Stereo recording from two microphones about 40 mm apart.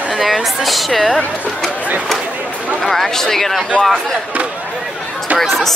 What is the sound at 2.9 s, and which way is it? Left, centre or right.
Speech, centre.